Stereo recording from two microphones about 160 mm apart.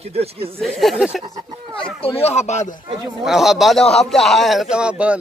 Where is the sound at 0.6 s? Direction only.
Centre (ahead or behind).